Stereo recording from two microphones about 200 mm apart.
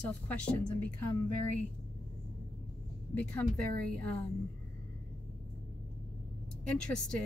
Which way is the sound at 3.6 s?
45° right (ahead or behind).